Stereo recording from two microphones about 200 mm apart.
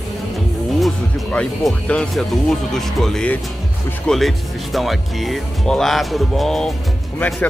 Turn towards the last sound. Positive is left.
turn(degrees=5)  # may be behind; listen again after turning